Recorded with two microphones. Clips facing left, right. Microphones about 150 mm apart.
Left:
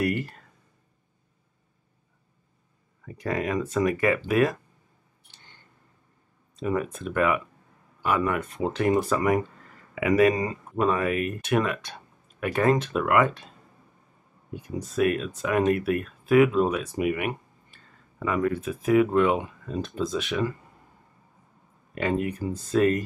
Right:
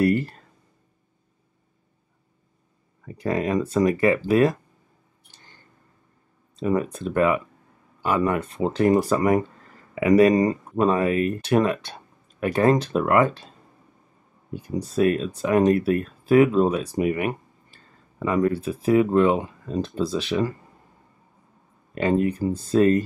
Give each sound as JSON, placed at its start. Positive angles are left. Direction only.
{"t": 0.0, "sound": "a sound", "side_deg": -30}
{"t": 3.1, "sound": "speech", "side_deg": -30}
{"t": 6.5, "sound": "speech", "side_deg": -30}
{"t": 14.5, "sound": "speech", "side_deg": -30}
{"t": 21.9, "sound": "speech", "side_deg": -30}